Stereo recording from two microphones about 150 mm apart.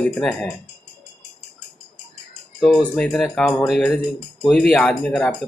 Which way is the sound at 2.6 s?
5° left (ahead or behind).